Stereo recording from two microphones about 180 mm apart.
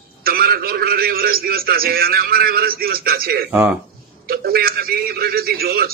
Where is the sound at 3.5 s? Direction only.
10° right (ahead or behind).